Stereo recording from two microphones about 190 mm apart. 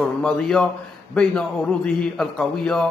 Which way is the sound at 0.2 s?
5° left (ahead or behind).